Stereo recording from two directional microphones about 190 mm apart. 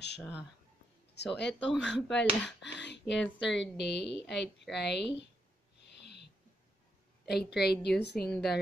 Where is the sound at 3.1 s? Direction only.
Centre (ahead or behind).